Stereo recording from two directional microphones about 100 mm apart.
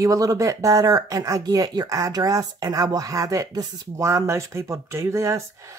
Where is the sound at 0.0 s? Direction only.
35° right (ahead or behind).